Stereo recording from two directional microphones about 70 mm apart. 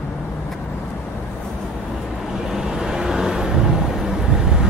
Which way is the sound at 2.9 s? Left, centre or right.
Centre.